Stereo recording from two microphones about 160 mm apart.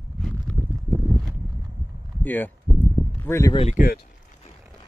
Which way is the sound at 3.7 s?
60° left (ahead or behind).